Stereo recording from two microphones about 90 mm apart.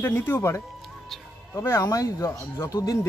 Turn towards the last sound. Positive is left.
turn(degrees=40)  # may be behind; listen again after turning